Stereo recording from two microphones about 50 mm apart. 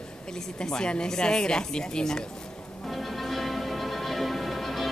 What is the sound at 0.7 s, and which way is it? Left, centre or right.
Speech, centre.